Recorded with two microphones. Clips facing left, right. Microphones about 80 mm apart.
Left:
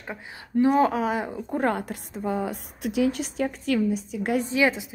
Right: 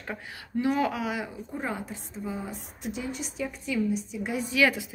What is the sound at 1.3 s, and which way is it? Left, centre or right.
A woman's voice, left.